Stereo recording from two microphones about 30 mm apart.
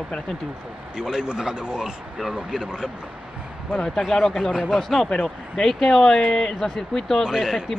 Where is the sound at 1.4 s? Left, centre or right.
Right.